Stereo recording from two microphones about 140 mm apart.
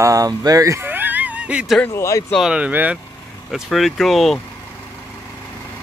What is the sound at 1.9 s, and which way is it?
Speech, 20° left (ahead or behind).